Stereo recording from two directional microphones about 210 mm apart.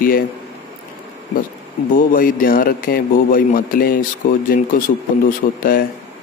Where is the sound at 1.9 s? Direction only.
40° left (ahead or behind).